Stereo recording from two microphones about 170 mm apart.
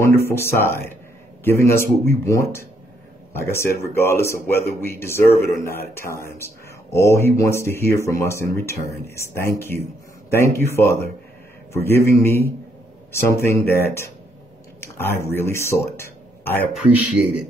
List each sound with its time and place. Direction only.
0.1 s speech: 15° left (ahead or behind)
15.0 s speech: 15° left (ahead or behind)
16.7 s a man's voice: centre (ahead or behind)